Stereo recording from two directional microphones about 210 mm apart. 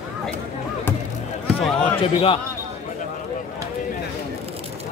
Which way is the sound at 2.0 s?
25° left (ahead or behind).